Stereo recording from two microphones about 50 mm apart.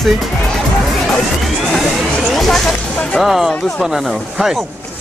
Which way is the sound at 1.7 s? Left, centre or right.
Centre.